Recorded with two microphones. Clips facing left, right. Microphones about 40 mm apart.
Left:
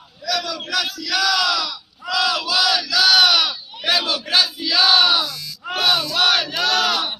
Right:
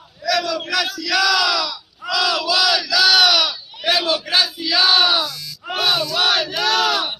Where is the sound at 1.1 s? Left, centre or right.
Centre.